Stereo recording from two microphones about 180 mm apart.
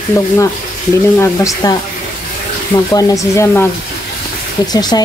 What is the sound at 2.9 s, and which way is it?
Speech, 20° left (ahead or behind).